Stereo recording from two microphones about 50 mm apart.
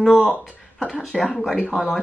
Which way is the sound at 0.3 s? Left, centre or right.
Left.